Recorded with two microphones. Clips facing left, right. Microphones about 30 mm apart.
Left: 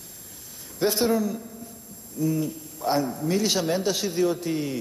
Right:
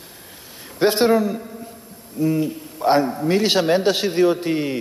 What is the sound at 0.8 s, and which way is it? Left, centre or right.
A man's voice, right.